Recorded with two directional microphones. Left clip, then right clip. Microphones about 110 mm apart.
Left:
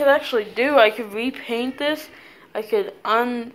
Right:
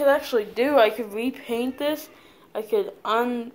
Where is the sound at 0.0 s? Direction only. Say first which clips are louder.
Left 3 dB; 10° right (ahead or behind).